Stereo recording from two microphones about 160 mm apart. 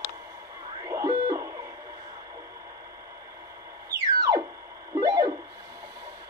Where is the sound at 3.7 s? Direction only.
20° right (ahead or behind).